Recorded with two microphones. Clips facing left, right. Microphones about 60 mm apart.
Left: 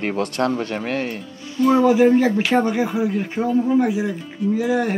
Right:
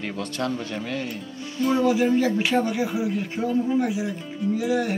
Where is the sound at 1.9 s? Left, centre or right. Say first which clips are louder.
Left 6 dB; left.